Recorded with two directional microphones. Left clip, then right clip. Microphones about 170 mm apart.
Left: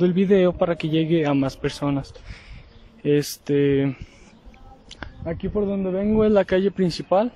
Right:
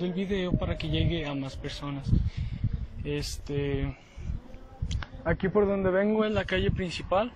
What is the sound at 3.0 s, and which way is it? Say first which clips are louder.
Speech: left 13 dB; 50° left (ahead or behind).